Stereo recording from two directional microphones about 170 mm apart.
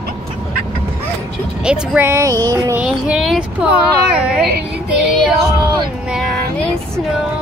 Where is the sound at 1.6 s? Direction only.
5° right (ahead or behind).